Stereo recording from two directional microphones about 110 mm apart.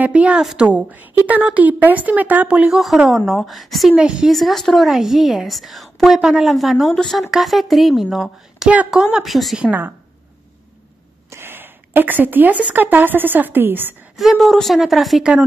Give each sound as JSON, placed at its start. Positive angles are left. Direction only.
{"t": 0.0, "sound": "a woman's voice", "side_deg": -10}
{"t": 9.7, "sound": "a woman's voice", "side_deg": -15}
{"t": 11.2, "sound": "a woman's voice", "side_deg": -20}
{"t": 14.1, "sound": "speech", "side_deg": 0}